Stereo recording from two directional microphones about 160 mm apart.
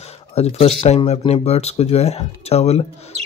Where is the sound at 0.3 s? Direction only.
40° left (ahead or behind).